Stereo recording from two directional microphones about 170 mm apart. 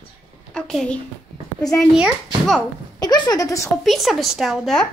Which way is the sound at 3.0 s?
25° left (ahead or behind).